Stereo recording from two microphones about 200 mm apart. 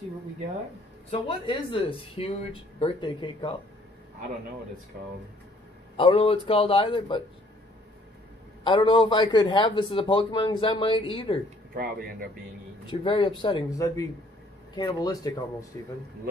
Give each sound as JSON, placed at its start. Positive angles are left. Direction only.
{"t": 1.2, "sound": "a man's voice", "side_deg": 25}
{"t": 5.9, "sound": "a man's voice", "side_deg": 25}
{"t": 8.6, "sound": "a man's voice", "side_deg": 25}
{"t": 11.7, "sound": "speech", "side_deg": -45}
{"t": 12.8, "sound": "a man's voice", "side_deg": 25}